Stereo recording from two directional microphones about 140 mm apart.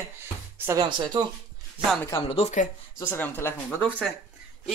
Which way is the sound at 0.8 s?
30° right (ahead or behind).